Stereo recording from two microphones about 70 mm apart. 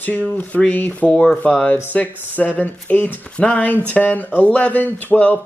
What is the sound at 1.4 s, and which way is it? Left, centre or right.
Speech, left.